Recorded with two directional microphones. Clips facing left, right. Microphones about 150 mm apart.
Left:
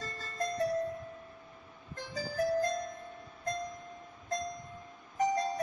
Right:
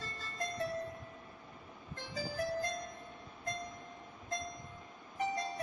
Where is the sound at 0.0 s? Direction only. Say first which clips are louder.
Left 5 dB; 40° left (ahead or behind).